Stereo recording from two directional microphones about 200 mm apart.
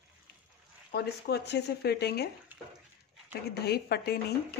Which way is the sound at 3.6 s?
55° left (ahead or behind).